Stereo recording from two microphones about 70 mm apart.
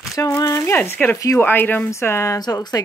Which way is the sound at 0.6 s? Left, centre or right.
Left.